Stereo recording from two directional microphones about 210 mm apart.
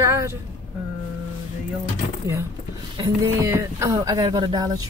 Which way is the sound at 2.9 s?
20° right (ahead or behind).